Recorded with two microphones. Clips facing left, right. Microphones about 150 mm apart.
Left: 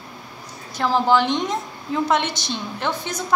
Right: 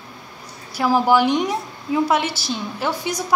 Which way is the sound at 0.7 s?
10° right (ahead or behind).